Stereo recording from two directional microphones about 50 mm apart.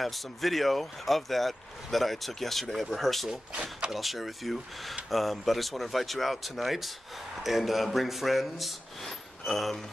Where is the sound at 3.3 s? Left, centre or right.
Centre.